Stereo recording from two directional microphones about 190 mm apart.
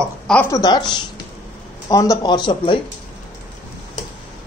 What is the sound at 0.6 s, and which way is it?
Speech, 20° left (ahead or behind).